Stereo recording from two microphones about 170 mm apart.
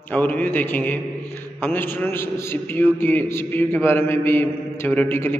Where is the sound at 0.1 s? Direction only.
10° left (ahead or behind).